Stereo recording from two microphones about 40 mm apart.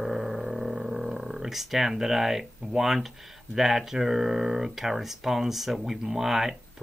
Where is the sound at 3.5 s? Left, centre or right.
Centre.